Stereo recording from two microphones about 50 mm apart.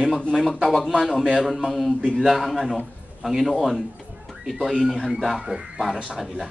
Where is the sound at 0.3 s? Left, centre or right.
Centre.